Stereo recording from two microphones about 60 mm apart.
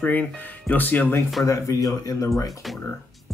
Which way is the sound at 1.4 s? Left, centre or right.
Left.